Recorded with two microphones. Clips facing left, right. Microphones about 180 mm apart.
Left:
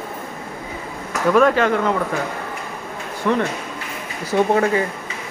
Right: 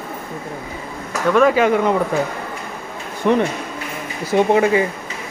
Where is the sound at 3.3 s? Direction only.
20° right (ahead or behind).